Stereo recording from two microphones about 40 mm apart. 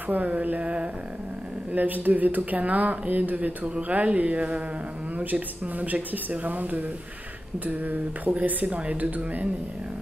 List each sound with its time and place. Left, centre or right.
0.1 s speech: right
1.7 s speech: right
5.1 s speech: right